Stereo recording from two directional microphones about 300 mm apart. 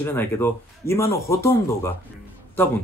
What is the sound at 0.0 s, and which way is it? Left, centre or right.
Speech, centre.